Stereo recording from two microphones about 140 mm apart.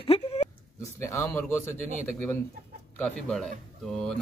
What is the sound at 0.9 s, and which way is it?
Speech, 20° left (ahead or behind).